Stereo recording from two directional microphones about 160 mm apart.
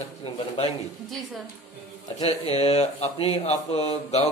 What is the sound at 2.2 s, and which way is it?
Speech, 40° left (ahead or behind).